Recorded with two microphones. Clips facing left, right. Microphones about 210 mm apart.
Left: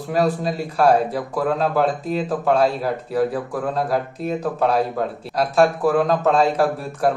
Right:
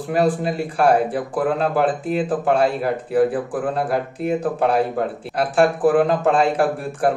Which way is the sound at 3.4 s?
30° right (ahead or behind).